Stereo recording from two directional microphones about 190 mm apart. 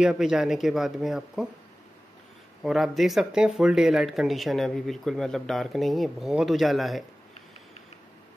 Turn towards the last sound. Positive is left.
turn(degrees=0)  # may be behind; listen again after turning